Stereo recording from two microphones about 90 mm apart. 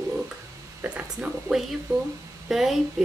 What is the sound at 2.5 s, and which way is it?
Speech, 5° right (ahead or behind).